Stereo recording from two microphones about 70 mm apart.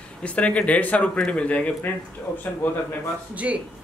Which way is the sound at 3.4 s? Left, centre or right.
Centre.